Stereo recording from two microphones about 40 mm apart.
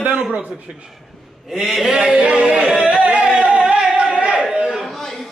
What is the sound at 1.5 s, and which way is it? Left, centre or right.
Speech, centre.